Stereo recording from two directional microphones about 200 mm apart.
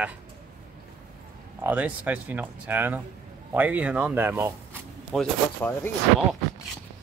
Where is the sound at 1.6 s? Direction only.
10° right (ahead or behind).